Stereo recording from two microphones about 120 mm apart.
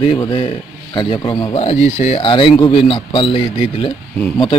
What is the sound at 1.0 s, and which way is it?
Speech, 40° left (ahead or behind).